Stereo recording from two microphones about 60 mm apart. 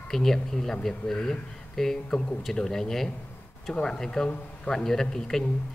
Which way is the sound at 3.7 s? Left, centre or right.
Centre.